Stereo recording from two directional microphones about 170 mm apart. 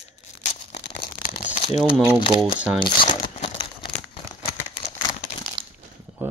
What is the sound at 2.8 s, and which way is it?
Crumpling, 30° left (ahead or behind).